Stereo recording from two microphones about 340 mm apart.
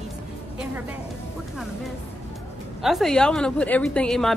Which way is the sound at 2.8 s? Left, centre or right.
Centre.